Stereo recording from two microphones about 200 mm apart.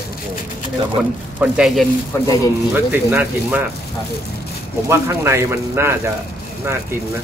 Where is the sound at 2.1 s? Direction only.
10° left (ahead or behind).